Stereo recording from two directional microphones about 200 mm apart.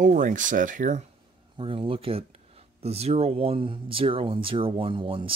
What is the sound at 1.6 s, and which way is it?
Speech, 25° right (ahead or behind).